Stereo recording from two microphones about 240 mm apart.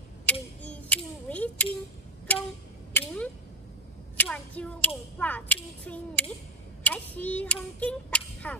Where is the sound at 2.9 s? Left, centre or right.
Centre.